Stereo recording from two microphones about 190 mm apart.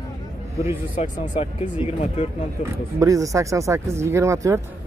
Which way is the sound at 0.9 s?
35° left (ahead or behind).